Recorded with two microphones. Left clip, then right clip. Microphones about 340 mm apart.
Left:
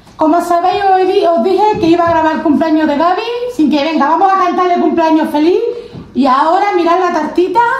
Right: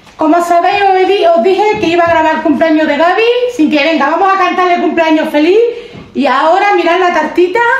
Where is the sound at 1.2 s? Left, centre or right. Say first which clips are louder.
Right 2 dB; centre.